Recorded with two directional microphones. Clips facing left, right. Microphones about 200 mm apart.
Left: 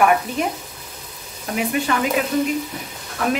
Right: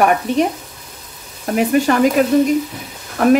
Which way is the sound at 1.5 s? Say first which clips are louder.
Right 7 dB; 40° right (ahead or behind).